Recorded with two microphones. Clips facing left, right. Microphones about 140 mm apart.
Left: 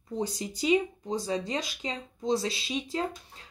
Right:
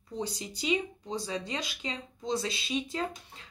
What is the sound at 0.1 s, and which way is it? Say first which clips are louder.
Speech: left 4 dB; 45° left (ahead or behind).